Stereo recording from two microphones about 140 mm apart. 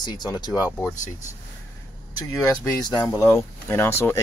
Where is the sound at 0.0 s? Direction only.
30° left (ahead or behind).